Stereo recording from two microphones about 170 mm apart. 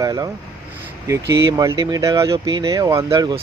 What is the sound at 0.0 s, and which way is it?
Speech, 20° right (ahead or behind).